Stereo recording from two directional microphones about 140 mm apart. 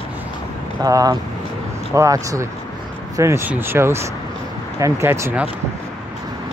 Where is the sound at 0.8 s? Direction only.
25° right (ahead or behind).